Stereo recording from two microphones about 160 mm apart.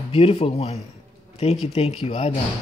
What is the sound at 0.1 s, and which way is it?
Speech, 35° left (ahead or behind).